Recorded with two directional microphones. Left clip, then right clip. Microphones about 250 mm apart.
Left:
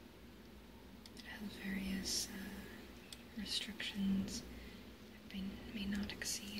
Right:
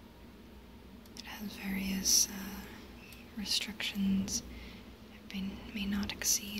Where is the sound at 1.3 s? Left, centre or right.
Right.